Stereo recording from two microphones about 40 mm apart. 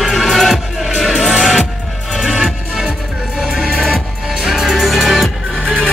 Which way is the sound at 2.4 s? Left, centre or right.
Centre.